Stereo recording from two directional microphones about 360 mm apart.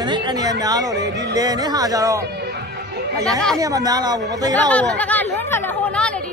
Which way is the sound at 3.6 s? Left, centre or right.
Centre.